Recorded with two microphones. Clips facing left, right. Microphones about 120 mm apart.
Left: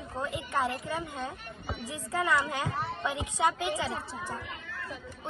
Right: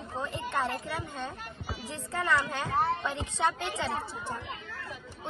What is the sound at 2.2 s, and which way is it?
Speech, 25° left (ahead or behind).